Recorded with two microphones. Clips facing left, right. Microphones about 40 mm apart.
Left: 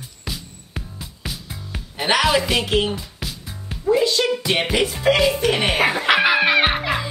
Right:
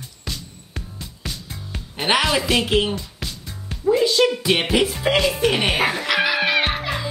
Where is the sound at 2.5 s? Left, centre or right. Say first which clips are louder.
Right 1 dB; centre.